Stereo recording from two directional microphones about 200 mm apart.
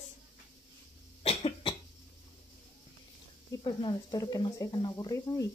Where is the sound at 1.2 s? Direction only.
30° left (ahead or behind).